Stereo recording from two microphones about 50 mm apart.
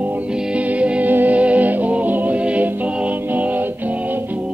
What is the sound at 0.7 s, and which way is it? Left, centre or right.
Music, right.